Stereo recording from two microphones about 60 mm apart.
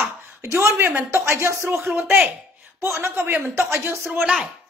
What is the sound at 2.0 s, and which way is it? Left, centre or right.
Speech, right.